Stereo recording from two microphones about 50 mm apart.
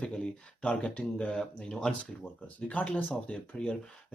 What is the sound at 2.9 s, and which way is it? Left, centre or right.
Speech, left.